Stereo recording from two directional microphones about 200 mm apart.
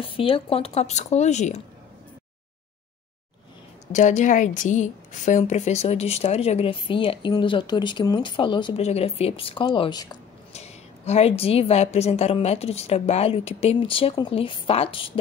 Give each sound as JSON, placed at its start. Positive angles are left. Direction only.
{"t": 0.0, "sound": "a woman's voice", "side_deg": 25}
{"t": 3.9, "sound": "a woman's voice", "side_deg": 35}
{"t": 10.5, "sound": "a woman's voice", "side_deg": 35}